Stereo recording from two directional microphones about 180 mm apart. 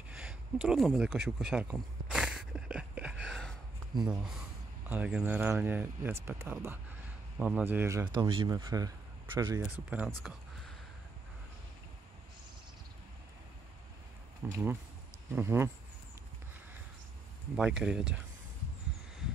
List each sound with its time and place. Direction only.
0.1 s a sound: 5° right (ahead or behind)
4.1 s speech: 5° right (ahead or behind)
8.1 s speech: 25° right (ahead or behind)
9.6 s speech: 5° right (ahead or behind)
14.5 s speech: 10° right (ahead or behind)
17.6 s speech: 5° right (ahead or behind)